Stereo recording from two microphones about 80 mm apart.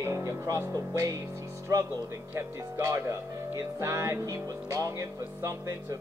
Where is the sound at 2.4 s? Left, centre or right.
Right.